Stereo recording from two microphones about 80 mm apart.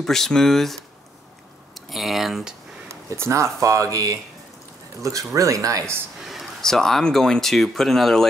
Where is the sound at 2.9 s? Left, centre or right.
Right.